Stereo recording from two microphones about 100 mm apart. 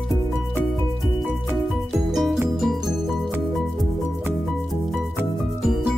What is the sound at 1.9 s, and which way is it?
Music, centre (ahead or behind).